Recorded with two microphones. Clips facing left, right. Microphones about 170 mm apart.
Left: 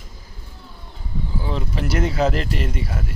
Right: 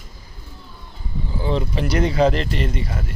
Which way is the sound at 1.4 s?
5° left (ahead or behind).